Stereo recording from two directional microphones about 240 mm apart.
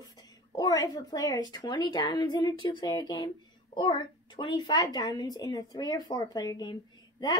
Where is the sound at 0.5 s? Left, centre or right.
Centre.